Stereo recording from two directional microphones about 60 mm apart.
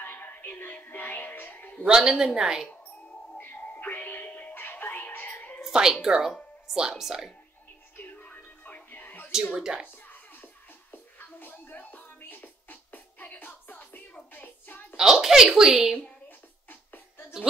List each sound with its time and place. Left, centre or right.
0.0 s speech: left
1.9 s a child's voice: centre
3.3 s music: left
5.6 s a sound: centre
6.0 s speech: centre
8.0 s music: left
9.3 s a child's voice: centre
10.0 s music: left
14.1 s child singing: left
15.0 s a child's voice: centre
16.3 s music: left